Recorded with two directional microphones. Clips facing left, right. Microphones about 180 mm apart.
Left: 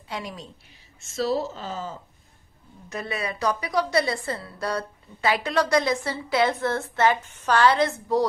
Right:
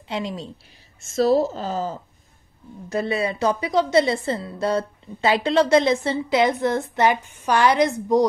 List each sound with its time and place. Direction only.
0.1 s a woman's voice: 25° right (ahead or behind)
1.0 s a woman's voice: 45° right (ahead or behind)
2.9 s a woman's voice: 30° right (ahead or behind)